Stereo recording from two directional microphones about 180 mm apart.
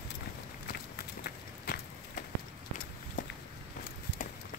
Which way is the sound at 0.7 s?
60° left (ahead or behind).